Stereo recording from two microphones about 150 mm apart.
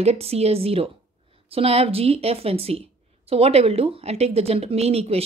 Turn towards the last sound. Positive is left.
turn(degrees=-45)  # may be behind; listen again after turning